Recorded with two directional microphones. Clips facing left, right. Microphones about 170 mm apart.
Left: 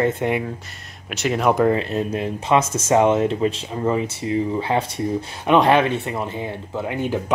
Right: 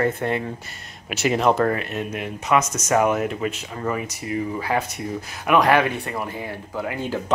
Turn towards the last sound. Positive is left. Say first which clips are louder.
# left 3 dB
turn(degrees=20)  # may be behind; listen again after turning